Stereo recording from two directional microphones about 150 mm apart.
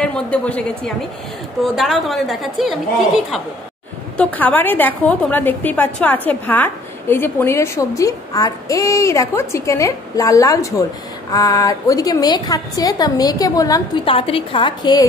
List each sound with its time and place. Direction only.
0.0 s a woman's voice: 5° left (ahead or behind)
4.2 s a woman's voice: 10° left (ahead or behind)
14.0 s a woman's voice: 40° left (ahead or behind)